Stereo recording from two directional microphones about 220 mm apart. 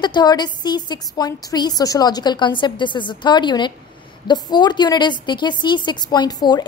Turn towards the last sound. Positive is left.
turn(degrees=15)  # may be behind; listen again after turning